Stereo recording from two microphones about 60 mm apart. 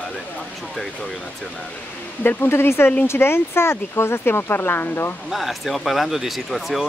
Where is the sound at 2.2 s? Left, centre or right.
Left.